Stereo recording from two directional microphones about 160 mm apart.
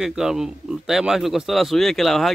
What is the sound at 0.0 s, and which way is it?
A man's voice, 5° right (ahead or behind).